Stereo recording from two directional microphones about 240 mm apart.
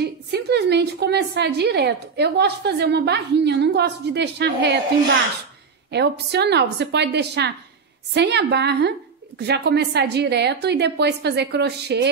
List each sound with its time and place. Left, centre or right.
0.0 s a woman's voice: right
5.9 s a woman's voice: right